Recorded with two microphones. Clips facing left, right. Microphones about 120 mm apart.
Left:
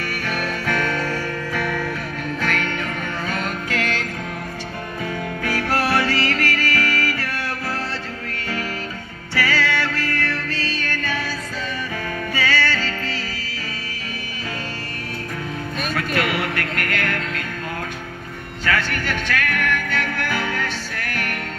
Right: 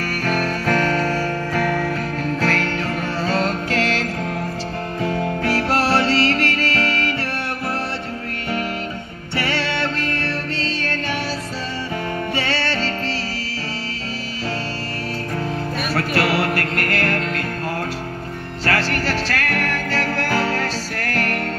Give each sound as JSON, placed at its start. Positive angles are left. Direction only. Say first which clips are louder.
{"t": 0.0, "sound": "music", "louder": "right 4 dB", "side_deg": -40}
{"t": 9.3, "sound": "music", "louder": "left 1 dB", "side_deg": -25}
{"t": 12.4, "sound": "music", "louder": "left 3 dB", "side_deg": -25}
{"t": 15.9, "sound": "music", "louder": "right 3 dB", "side_deg": -35}
{"t": 18.7, "sound": "music", "louder": "right 2 dB", "side_deg": -35}